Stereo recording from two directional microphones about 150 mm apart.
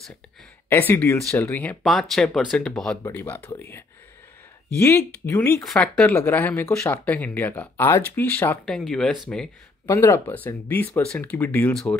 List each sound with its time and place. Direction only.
0.7 s speech: 10° left (ahead or behind)
3.0 s speech: 15° left (ahead or behind)
5.6 s speech: 5° left (ahead or behind)
9.8 s speech: 15° left (ahead or behind)